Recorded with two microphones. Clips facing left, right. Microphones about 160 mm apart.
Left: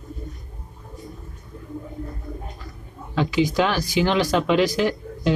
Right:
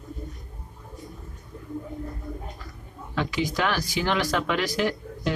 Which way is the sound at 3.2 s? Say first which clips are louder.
Left 6 dB; 20° left (ahead or behind).